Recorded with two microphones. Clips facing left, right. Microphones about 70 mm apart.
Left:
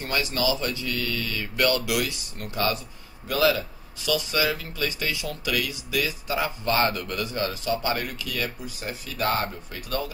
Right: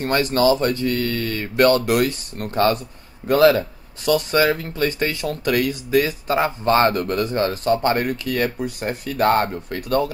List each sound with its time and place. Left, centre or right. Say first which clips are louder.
0.0 s speech: right 9 dB; right